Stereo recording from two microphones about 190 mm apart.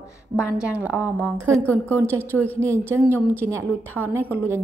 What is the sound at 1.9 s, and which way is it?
A woman's voice, 15° right (ahead or behind).